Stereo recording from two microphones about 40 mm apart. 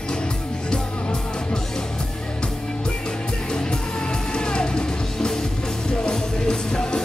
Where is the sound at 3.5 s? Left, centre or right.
Centre.